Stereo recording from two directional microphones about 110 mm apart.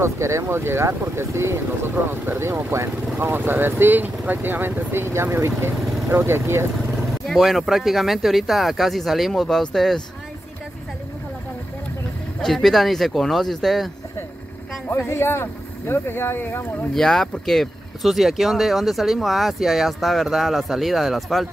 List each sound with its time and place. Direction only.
0.0 s speech: 25° right (ahead or behind)
7.0 s speech: centre (ahead or behind)
12.4 s speech: 5° left (ahead or behind)
14.9 s speech: 25° left (ahead or behind)
16.9 s speech: 5° left (ahead or behind)